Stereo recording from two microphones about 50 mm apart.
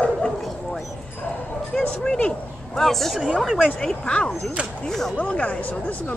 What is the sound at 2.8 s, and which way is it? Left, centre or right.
Speech, centre.